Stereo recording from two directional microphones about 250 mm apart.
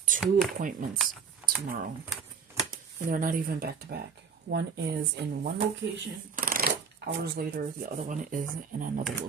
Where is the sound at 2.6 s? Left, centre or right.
Right.